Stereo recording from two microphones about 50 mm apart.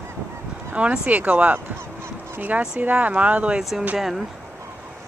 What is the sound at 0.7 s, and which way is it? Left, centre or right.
Speech, right.